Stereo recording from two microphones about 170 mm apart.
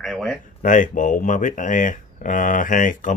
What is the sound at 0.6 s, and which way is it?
Speech, 50° left (ahead or behind).